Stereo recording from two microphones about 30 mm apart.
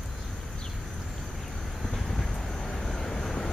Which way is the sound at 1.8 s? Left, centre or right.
Centre.